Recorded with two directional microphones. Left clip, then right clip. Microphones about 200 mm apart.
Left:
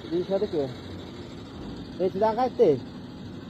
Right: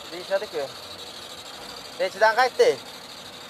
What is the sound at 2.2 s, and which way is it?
Speech, 15° right (ahead or behind).